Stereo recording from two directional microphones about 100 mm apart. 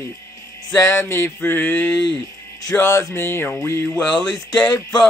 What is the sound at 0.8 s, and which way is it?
Mantra, 30° left (ahead or behind).